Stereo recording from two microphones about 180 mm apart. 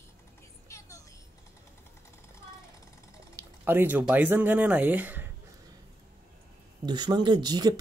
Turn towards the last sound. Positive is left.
turn(degrees=-25)  # may be behind; listen again after turning